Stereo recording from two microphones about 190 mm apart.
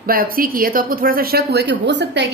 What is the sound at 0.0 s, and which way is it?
Speech, 50° right (ahead or behind).